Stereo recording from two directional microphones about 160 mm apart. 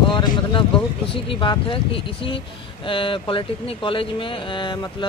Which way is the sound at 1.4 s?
30° left (ahead or behind).